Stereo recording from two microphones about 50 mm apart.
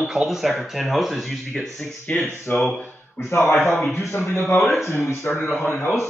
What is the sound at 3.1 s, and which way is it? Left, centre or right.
Speech, left.